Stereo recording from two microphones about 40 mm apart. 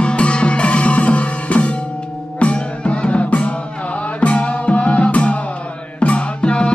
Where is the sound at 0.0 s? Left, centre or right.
Left.